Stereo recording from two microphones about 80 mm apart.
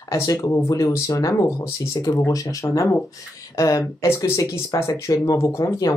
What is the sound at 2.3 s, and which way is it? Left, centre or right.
Speech, left.